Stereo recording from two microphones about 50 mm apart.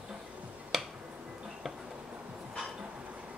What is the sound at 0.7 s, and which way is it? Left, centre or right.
Music, centre.